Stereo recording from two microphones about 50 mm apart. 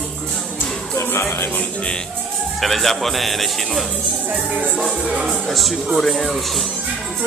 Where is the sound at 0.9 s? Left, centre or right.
Left.